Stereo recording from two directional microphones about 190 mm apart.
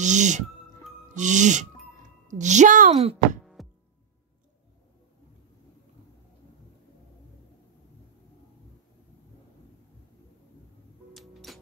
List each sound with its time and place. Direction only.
0.0 s music: 40° right (ahead or behind)
1.1 s speech: 40° right (ahead or behind)
3.6 s music: centre (ahead or behind)
11.1 s music: centre (ahead or behind)